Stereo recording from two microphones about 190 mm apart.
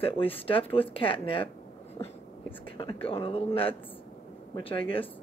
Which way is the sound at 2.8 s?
30° left (ahead or behind).